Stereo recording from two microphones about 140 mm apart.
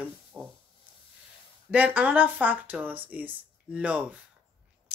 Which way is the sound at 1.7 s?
10° right (ahead or behind).